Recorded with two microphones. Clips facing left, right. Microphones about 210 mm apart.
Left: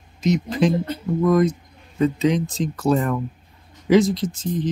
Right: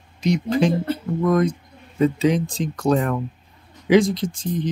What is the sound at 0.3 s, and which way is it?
Speech, centre (ahead or behind).